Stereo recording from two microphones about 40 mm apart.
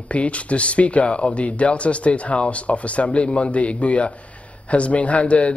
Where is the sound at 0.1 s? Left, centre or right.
Left.